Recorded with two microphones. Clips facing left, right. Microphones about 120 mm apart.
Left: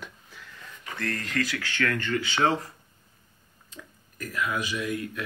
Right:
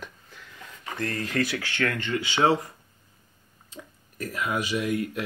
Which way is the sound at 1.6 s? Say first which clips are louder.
Even; 25° right (ahead or behind).